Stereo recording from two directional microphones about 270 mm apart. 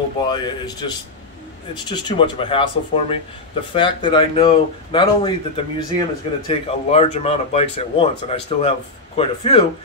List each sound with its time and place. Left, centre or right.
0.3 s speech: centre